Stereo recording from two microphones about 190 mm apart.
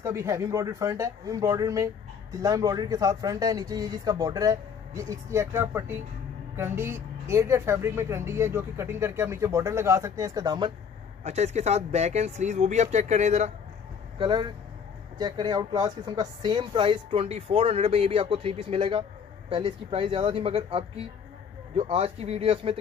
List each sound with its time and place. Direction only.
0.0 s speech: 15° right (ahead or behind)
11.2 s speech: 35° right (ahead or behind)
14.1 s speech: 25° right (ahead or behind)